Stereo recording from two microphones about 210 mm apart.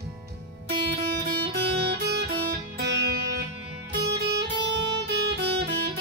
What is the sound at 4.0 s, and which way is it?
Music, 50° right (ahead or behind).